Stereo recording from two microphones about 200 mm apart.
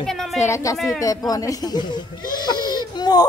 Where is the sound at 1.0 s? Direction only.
15° left (ahead or behind).